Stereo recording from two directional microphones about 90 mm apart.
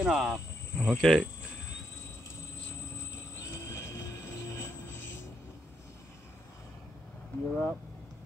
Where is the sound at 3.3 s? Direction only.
35° left (ahead or behind).